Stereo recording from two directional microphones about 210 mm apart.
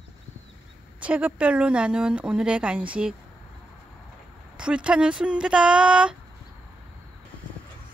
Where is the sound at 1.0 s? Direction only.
5° right (ahead or behind).